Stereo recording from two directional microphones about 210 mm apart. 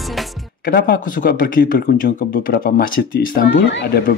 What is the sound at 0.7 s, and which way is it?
Speech, 45° left (ahead or behind).